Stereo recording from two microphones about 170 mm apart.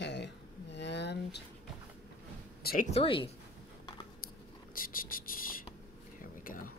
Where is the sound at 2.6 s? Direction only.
55° left (ahead or behind).